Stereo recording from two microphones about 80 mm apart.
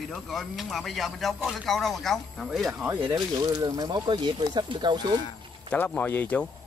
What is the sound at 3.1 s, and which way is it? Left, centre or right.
Speech, right.